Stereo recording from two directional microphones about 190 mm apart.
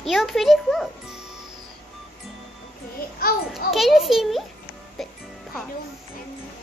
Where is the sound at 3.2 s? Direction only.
50° left (ahead or behind).